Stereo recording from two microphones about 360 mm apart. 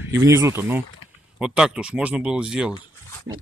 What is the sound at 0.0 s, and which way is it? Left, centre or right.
Speech, centre.